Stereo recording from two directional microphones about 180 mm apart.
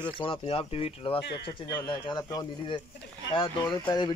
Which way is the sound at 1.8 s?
20° left (ahead or behind).